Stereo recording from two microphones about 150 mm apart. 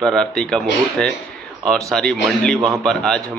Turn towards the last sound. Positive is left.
turn(degrees=5)  # may be behind; listen again after turning